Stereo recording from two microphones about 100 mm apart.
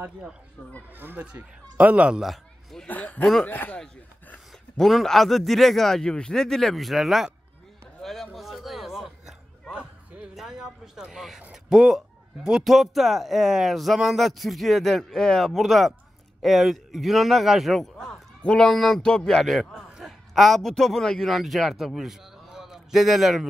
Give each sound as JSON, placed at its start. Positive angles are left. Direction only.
{"t": 0.9, "sound": "speech", "side_deg": -20}
{"t": 2.9, "sound": "speech", "side_deg": 15}
{"t": 4.7, "sound": "speech", "side_deg": 5}
{"t": 8.0, "sound": "a sound", "side_deg": 5}
{"t": 12.4, "sound": "a man's voice", "side_deg": -5}